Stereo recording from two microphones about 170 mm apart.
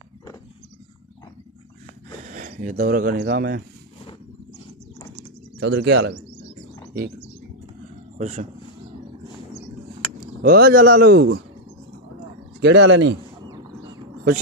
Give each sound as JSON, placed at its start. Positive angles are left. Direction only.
{"t": 2.2, "sound": "speech", "side_deg": -50}
{"t": 5.6, "sound": "speech", "side_deg": -90}
{"t": 6.9, "sound": "bird", "side_deg": -65}
{"t": 8.2, "sound": "speech", "side_deg": -45}
{"t": 10.4, "sound": "a man's voice", "side_deg": -60}
{"t": 12.6, "sound": "speech", "side_deg": -90}